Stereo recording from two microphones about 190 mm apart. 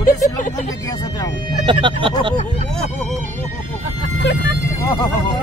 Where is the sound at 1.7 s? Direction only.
25° right (ahead or behind).